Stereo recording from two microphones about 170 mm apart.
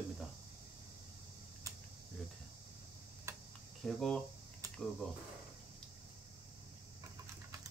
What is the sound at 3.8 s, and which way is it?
Speech, centre (ahead or behind).